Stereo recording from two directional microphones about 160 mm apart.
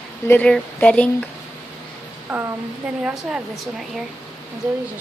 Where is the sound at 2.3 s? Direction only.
15° right (ahead or behind).